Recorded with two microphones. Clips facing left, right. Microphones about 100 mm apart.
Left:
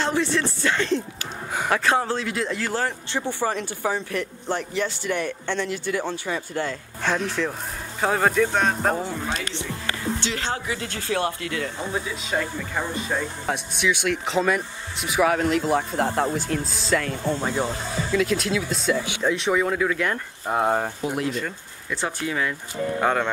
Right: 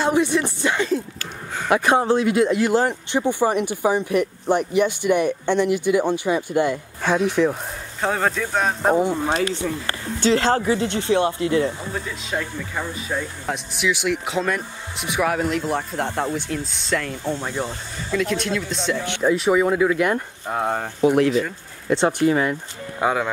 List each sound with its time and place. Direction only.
0.0 s speech: 15° right (ahead or behind)
8.0 s speech: centre (ahead or behind)
8.9 s speech: 15° right (ahead or behind)
9.3 s speech: 40° right (ahead or behind)
10.8 s speech: 25° right (ahead or behind)
11.8 s speech: 5° left (ahead or behind); by 20.2 s 10° right (ahead or behind)
20.4 s speech: 5° left (ahead or behind)
22.3 s speech: 30° right (ahead or behind)
22.9 s speech: 10° right (ahead or behind)